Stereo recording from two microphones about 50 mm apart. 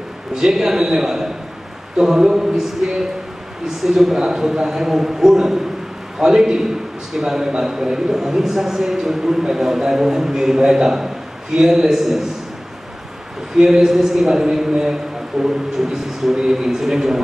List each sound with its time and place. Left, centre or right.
0.3 s a man's voice: centre
13.6 s a man's voice: centre